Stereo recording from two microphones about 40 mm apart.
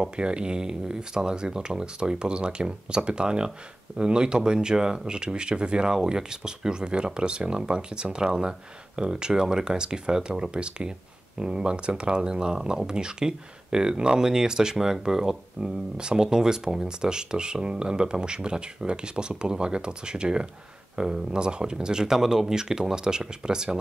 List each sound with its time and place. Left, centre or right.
0.0 s speech: right